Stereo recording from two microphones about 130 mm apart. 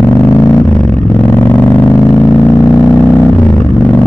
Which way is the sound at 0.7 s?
10° left (ahead or behind).